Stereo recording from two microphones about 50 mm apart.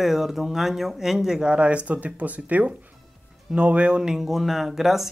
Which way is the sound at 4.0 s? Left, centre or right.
Centre.